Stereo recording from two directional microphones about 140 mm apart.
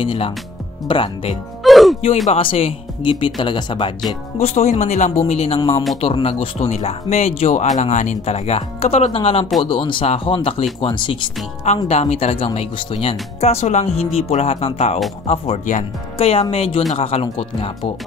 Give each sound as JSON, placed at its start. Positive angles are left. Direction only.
{"t": 0.0, "sound": "speech", "side_deg": 40}
{"t": 1.6, "sound": "music", "side_deg": 0}
{"t": 2.2, "sound": "speech", "side_deg": 45}
{"t": 4.4, "sound": "speech", "side_deg": 55}
{"t": 11.6, "sound": "speech", "side_deg": 50}